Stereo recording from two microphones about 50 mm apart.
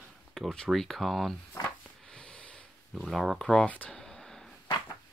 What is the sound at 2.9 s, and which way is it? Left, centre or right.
Speech, centre.